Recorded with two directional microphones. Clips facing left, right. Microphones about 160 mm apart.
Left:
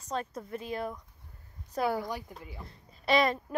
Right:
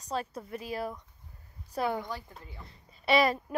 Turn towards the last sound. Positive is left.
turn(degrees=-5)  # may be behind; listen again after turning